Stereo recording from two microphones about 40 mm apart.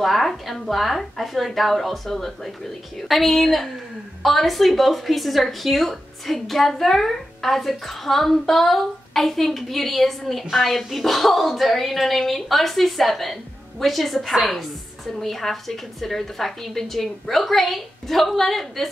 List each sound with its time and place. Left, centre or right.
0.0 s speech: centre